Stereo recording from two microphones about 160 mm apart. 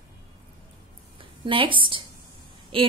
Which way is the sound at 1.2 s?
30° right (ahead or behind).